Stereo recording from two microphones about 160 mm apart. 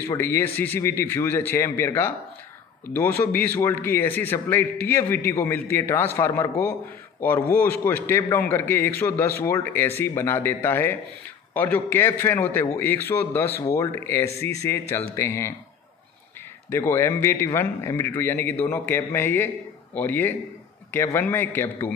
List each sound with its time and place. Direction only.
0.0 s a man's voice: 15° left (ahead or behind)
3.3 s a man's voice: 10° left (ahead or behind)
16.7 s a man's voice: 15° left (ahead or behind)